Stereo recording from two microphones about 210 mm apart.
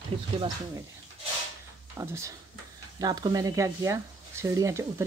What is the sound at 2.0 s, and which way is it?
Speech, 15° right (ahead or behind).